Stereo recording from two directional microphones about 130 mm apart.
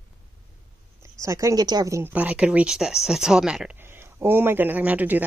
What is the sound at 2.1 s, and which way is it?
Speech, 10° right (ahead or behind).